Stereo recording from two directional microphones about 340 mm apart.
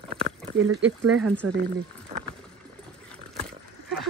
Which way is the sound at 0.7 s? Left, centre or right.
Right.